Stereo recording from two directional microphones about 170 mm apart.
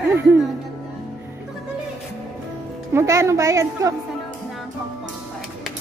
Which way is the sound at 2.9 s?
15° right (ahead or behind).